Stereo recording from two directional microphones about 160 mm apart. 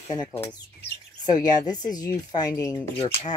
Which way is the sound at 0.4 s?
10° left (ahead or behind).